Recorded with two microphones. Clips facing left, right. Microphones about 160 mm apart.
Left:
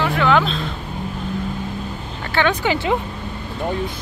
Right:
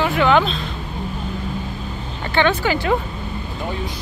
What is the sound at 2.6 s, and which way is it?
Speech, 20° left (ahead or behind).